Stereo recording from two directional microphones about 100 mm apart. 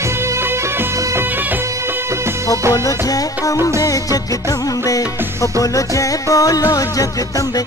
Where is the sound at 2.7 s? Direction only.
35° left (ahead or behind).